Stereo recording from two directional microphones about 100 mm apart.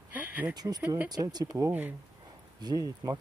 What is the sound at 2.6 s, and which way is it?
Speech, 40° right (ahead or behind).